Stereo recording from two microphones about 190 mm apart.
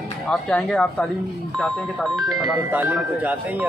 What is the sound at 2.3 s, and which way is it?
Speech, 20° right (ahead or behind).